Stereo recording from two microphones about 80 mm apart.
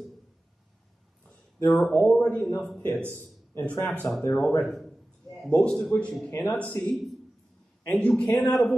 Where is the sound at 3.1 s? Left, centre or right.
Left.